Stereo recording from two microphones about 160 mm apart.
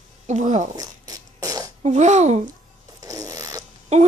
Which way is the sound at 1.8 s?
45° right (ahead or behind).